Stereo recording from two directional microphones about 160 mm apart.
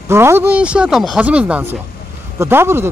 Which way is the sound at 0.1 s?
15° right (ahead or behind).